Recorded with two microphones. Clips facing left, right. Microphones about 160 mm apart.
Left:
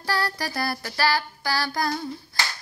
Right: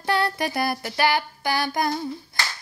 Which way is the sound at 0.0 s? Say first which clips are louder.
Right 4 dB; 20° right (ahead or behind).